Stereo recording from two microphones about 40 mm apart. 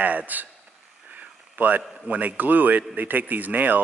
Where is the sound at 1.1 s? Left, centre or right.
Right.